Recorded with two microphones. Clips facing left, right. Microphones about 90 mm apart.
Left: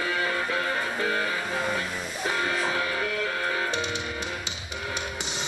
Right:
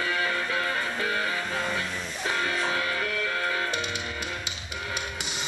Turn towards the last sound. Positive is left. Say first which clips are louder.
# left 1 dB
turn(degrees=10)  # may be behind; listen again after turning